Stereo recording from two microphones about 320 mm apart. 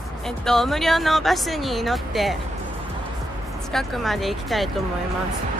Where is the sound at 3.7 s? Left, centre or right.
Centre.